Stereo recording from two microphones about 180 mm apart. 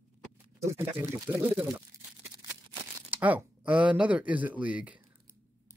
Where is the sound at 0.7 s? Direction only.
15° right (ahead or behind).